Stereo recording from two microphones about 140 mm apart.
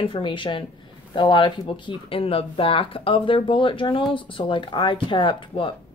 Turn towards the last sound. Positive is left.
turn(degrees=35)  # may be behind; listen again after turning